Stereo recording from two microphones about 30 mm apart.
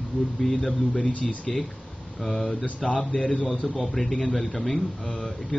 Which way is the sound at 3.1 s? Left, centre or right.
Centre.